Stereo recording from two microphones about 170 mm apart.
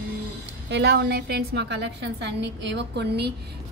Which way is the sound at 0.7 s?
85° right.